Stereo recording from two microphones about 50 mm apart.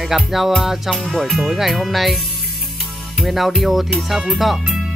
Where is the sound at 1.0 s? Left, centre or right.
Centre.